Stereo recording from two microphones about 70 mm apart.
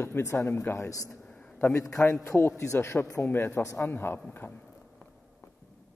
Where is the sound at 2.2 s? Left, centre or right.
Left.